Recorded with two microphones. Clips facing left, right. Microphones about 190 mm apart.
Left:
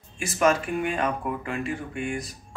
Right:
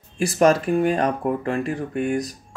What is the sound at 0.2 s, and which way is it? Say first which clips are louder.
Speech: right 5 dB; 35° right (ahead or behind).